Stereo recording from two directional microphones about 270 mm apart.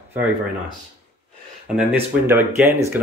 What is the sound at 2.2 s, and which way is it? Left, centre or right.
Speech, centre.